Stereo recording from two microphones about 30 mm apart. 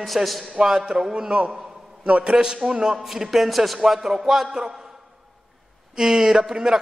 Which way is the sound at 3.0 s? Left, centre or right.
Centre.